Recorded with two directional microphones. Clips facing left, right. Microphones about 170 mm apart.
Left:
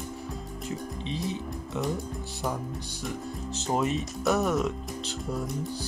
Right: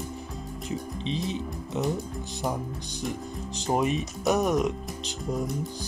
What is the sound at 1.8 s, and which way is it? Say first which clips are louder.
Speech: right 3 dB; 20° right (ahead or behind).